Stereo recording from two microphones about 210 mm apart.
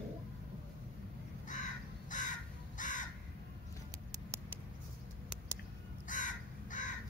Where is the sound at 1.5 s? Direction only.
35° left (ahead or behind).